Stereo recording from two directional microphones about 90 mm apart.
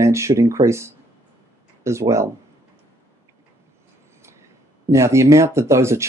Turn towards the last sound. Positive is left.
turn(degrees=-30)  # may be behind; listen again after turning